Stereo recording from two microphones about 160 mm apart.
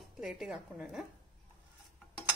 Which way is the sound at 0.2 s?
5° right (ahead or behind).